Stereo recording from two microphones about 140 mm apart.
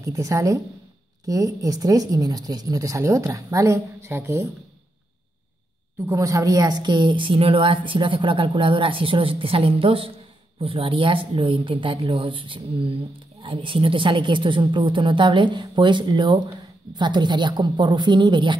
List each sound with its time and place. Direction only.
0.0 s speech: 25° right (ahead or behind)
6.0 s a woman's voice: 25° right (ahead or behind)